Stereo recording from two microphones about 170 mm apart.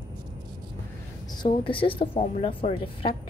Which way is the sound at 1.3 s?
30° left (ahead or behind).